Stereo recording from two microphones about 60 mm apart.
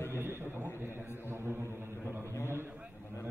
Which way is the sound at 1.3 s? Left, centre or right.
Right.